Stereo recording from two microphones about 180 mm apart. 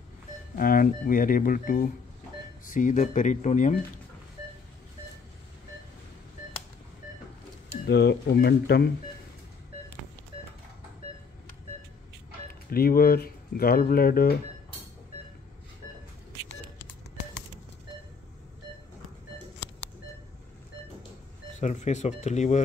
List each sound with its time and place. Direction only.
0.6 s speech: 50° left (ahead or behind)
7.8 s speech: 65° left (ahead or behind)
12.4 s speech: 55° left (ahead or behind)
21.5 s speech: 40° left (ahead or behind)